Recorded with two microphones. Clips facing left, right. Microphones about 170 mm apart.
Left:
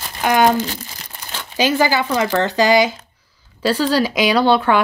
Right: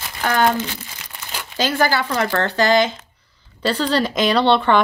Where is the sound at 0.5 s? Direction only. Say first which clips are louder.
Left 4 dB; 35° left (ahead or behind).